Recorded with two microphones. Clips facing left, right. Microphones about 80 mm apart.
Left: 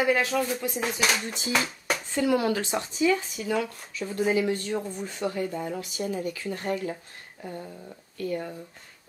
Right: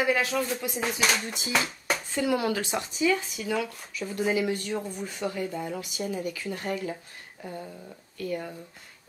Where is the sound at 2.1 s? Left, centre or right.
Left.